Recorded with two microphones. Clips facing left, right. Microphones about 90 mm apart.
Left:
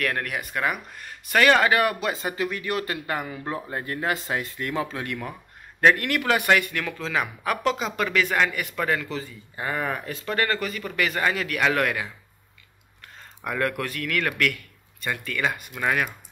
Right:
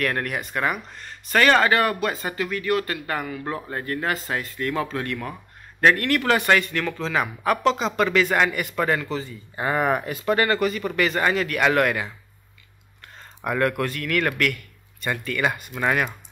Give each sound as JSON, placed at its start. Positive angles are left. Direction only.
{"t": 0.0, "sound": "a man's voice", "side_deg": 0}
{"t": 9.6, "sound": "speech", "side_deg": -25}
{"t": 10.0, "sound": "a man's voice", "side_deg": -10}
{"t": 13.4, "sound": "a man's voice", "side_deg": -5}